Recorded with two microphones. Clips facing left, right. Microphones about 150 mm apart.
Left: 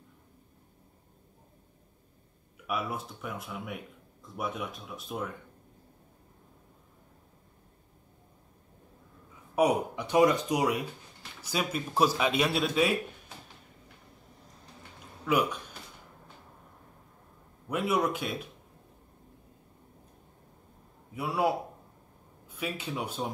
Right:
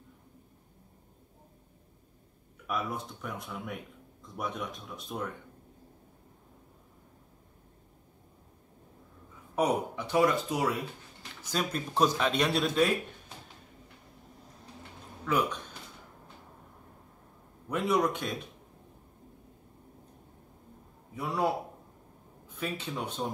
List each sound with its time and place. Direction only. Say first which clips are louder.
2.6 s speech: left 1 dB; 5° left (ahead or behind)
9.6 s speech: left 3 dB; 10° left (ahead or behind)
15.2 s speech: left 2 dB; 10° left (ahead or behind)
17.6 s speech: even; 5° left (ahead or behind)
21.1 s a man's voice: left 1 dB; 10° left (ahead or behind)
22.6 s speech: left 1 dB; 10° left (ahead or behind)